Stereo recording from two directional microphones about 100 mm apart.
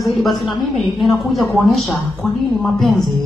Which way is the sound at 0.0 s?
Centre (ahead or behind).